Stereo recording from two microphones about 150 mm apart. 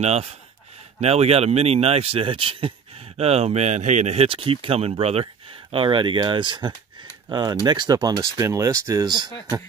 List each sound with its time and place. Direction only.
0.0 s speech: 45° right (ahead or behind); by 9.3 s 30° right (ahead or behind)